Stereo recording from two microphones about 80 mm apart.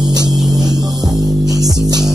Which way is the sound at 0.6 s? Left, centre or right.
Right.